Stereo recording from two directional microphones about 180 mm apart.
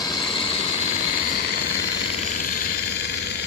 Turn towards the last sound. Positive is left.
turn(degrees=70)  # may be behind; listen again after turning